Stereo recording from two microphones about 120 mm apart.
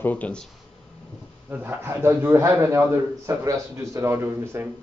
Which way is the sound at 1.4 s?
15° right (ahead or behind).